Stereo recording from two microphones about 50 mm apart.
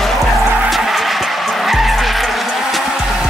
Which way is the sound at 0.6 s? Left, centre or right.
Centre.